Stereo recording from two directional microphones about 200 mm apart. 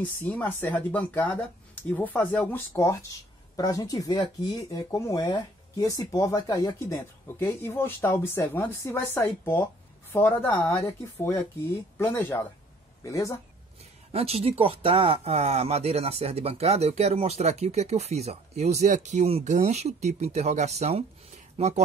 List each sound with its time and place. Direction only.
0.2 s speech: 10° left (ahead or behind)
14.1 s speech: 30° right (ahead or behind)